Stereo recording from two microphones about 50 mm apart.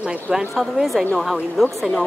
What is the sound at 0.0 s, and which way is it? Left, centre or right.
Speech, centre.